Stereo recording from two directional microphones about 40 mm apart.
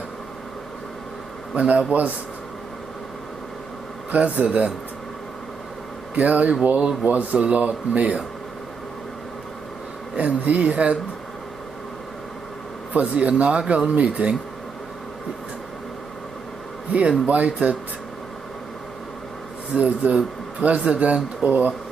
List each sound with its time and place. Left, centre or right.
1.5 s speech: right
4.1 s speech: right
6.1 s speech: right
10.1 s speech: right
12.9 s speech: right
17.3 s speech: right
19.7 s speech: right
21.5 s speech: right